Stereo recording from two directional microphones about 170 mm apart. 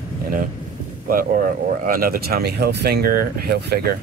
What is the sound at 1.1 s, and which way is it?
Speech, 55° right (ahead or behind).